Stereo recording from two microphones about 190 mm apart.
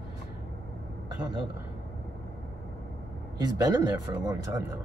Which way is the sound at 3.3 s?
20° right (ahead or behind).